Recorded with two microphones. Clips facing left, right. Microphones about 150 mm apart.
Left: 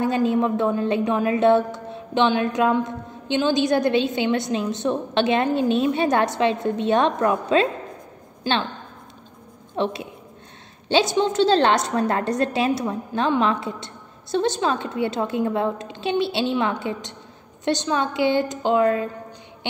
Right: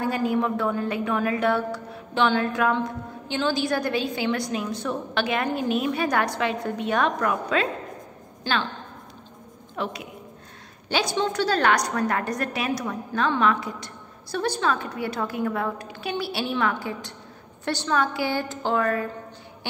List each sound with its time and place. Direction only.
0.0 s a woman's voice: 25° left (ahead or behind)
9.8 s a woman's voice: 25° left (ahead or behind)